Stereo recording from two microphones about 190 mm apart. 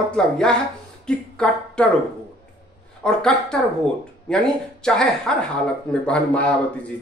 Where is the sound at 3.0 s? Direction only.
5° left (ahead or behind).